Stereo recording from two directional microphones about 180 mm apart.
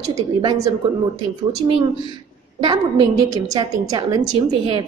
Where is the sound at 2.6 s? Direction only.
25° right (ahead or behind).